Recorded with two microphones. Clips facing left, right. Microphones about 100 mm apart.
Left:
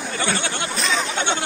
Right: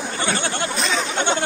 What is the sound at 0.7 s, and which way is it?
Chatter, centre (ahead or behind).